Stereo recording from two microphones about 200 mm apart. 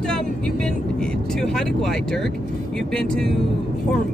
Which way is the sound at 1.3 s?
Centre (ahead or behind).